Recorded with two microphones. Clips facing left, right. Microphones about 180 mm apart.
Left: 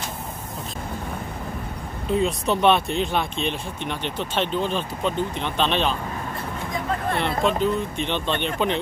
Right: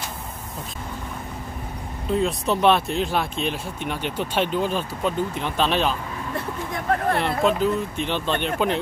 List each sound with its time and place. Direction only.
2.0 s speech: centre (ahead or behind)
6.7 s vehicle: 60° right (ahead or behind)
7.2 s speech: 5° right (ahead or behind)